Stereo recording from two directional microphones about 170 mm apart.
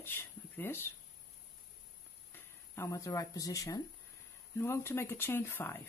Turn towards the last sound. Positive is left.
turn(degrees=15)  # may be behind; listen again after turning